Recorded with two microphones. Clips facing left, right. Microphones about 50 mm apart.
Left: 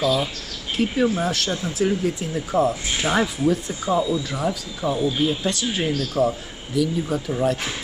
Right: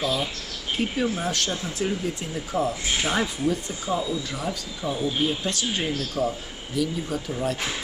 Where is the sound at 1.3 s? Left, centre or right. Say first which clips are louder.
Left 3 dB; centre.